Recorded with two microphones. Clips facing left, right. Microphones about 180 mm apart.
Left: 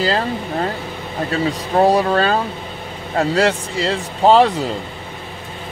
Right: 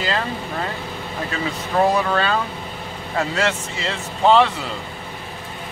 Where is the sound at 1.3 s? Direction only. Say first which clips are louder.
Left 5 dB; 35° left (ahead or behind).